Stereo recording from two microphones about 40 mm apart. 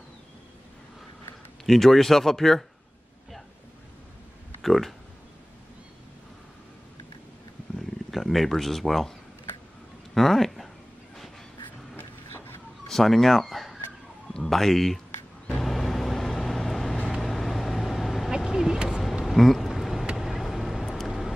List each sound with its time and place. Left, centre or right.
1.7 s speech: centre
4.6 s speech: centre
8.1 s speech: centre
10.1 s speech: centre
12.8 s speech: centre
15.5 s vehicle: centre
18.4 s vehicle: centre
19.2 s vehicle: centre